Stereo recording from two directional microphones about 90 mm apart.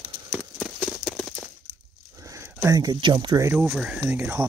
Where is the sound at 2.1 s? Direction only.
35° right (ahead or behind).